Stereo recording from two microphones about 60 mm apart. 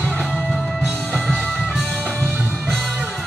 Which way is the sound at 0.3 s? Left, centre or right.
Centre.